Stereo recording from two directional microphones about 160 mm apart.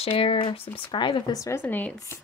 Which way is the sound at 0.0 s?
35° left (ahead or behind).